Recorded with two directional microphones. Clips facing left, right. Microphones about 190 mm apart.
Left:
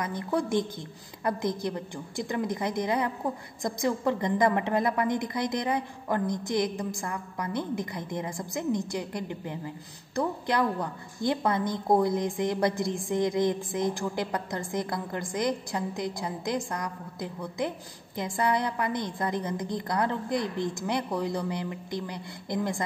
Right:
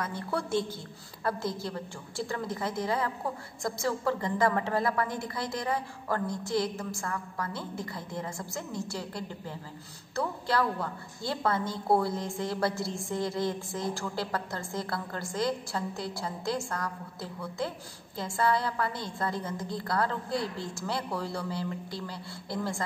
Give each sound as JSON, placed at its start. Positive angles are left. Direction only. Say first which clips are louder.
{"t": 0.0, "sound": "a woman's voice", "louder": "left 4 dB", "side_deg": 15}